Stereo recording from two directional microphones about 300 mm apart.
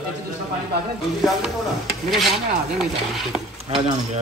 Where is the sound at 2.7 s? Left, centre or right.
Centre.